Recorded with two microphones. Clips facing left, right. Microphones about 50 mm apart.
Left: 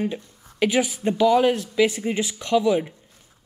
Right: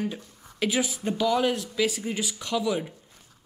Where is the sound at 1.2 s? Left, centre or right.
Centre.